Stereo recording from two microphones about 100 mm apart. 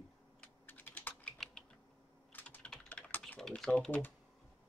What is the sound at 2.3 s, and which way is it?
Typing, 15° left (ahead or behind).